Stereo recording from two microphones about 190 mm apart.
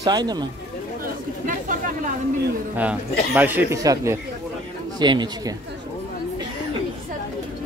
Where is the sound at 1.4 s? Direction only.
45° right (ahead or behind).